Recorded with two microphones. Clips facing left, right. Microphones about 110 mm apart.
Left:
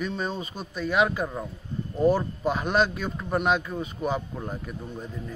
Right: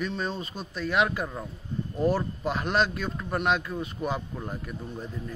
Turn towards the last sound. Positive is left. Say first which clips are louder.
# even
turn(degrees=0)  # may be behind; listen again after turning